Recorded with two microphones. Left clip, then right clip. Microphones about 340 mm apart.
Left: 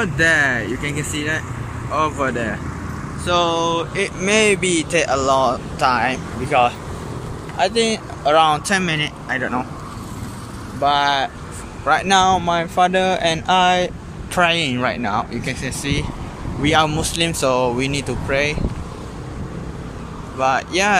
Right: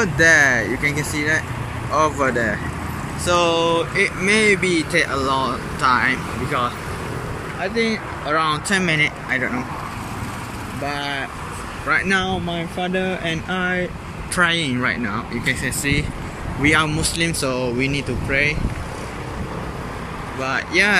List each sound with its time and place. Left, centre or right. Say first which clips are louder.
0.0 s speech: right 2 dB; centre
12.2 s speech: left 8 dB; left
13.0 s speech: left 6 dB; centre
20.3 s speech: left 1 dB; centre